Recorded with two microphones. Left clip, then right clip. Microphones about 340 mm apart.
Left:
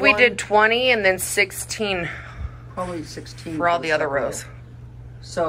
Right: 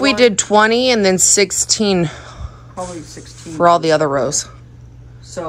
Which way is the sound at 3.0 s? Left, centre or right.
Centre.